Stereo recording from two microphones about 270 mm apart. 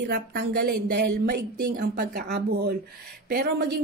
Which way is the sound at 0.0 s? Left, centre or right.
Right.